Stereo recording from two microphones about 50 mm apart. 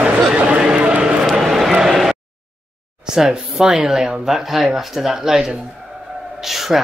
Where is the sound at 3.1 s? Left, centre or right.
Centre.